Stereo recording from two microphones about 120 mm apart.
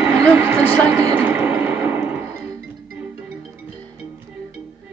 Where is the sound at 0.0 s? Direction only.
25° right (ahead or behind).